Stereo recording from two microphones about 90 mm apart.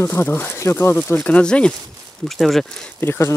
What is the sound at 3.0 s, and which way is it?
Speech, 25° left (ahead or behind).